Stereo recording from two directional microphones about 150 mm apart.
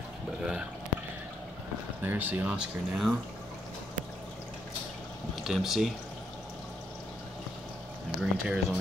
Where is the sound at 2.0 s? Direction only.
15° right (ahead or behind).